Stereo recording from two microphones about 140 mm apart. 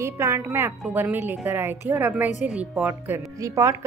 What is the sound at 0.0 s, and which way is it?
A woman's voice, 20° right (ahead or behind).